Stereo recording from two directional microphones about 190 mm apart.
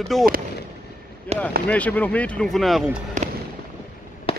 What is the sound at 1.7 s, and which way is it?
Speech, 5° left (ahead or behind).